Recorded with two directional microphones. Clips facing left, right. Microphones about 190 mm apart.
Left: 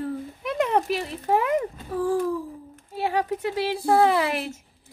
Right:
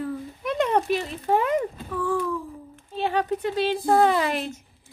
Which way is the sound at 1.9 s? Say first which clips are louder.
Left 3 dB; 40° left (ahead or behind).